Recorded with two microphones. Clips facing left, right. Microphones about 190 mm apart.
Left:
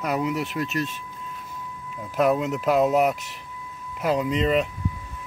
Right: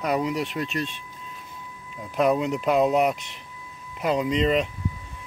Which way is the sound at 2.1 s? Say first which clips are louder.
Even; centre (ahead or behind).